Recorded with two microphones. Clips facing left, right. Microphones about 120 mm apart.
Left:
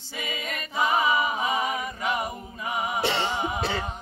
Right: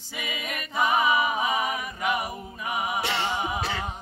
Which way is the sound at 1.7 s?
25° left (ahead or behind).